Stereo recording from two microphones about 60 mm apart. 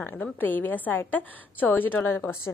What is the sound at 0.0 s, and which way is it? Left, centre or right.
A woman's voice, left.